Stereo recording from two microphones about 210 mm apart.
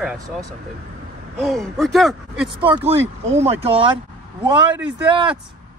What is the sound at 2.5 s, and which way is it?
Speech, 25° right (ahead or behind).